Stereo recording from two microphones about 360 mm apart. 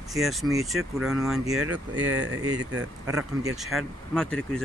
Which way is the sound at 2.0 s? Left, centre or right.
Right.